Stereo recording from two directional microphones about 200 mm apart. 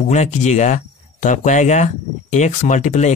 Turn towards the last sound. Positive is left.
turn(degrees=35)  # may be behind; listen again after turning